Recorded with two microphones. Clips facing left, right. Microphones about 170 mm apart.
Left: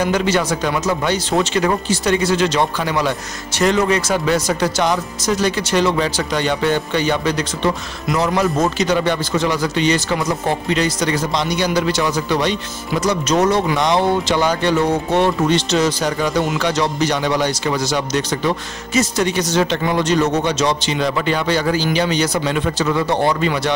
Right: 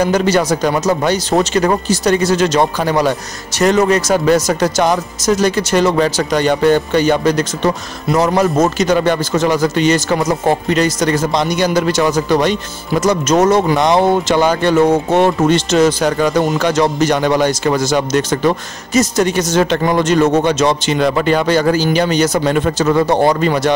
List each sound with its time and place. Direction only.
0.0 s speech: 40° right (ahead or behind)